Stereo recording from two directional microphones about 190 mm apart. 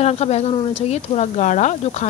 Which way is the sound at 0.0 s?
35° left (ahead or behind).